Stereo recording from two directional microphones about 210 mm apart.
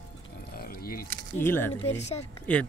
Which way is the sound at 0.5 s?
45° left (ahead or behind).